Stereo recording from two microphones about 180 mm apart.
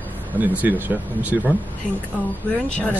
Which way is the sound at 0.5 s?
10° right (ahead or behind).